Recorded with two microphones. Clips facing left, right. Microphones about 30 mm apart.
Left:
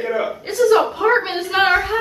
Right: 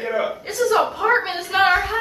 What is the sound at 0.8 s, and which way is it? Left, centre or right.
A woman's voice, centre.